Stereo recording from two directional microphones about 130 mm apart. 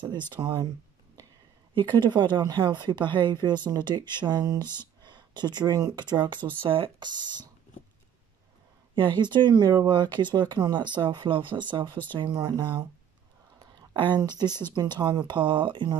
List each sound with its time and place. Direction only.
0.3 s speech: 35° right (ahead or behind)
1.8 s speech: 35° right (ahead or behind)
8.9 s speech: 35° right (ahead or behind)
14.0 s speech: 35° right (ahead or behind)